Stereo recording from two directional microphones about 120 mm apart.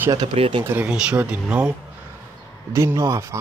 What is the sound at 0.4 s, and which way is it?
Speech, 45° right (ahead or behind).